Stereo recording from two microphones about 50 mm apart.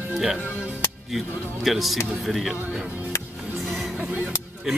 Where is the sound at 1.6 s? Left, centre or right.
Centre.